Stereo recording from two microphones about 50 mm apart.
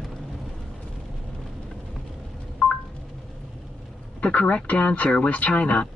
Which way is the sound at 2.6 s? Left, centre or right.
Centre.